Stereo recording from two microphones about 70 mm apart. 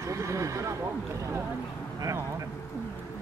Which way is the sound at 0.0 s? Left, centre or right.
Right.